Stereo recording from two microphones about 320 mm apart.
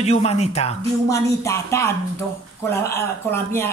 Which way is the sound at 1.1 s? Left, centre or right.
Centre.